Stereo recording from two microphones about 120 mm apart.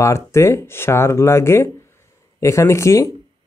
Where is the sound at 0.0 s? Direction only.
25° left (ahead or behind).